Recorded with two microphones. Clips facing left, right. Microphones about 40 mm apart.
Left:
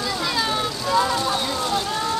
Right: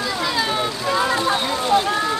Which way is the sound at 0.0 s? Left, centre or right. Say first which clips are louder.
Right 2 dB; centre.